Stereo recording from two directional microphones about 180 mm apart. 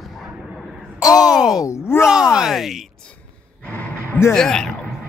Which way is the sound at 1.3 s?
5° right (ahead or behind).